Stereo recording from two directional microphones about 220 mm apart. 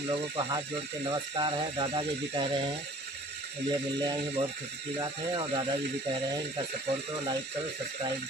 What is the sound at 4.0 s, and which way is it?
Speech, 15° right (ahead or behind).